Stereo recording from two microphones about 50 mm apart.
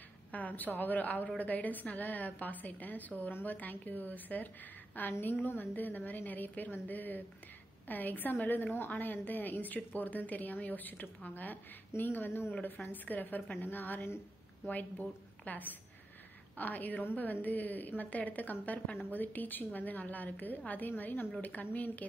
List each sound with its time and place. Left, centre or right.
0.3 s a woman's voice: left
5.2 s a woman's voice: left
12.8 s a woman's voice: left